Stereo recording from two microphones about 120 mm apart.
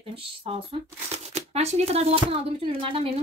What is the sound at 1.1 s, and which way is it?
Speech, 65° right (ahead or behind).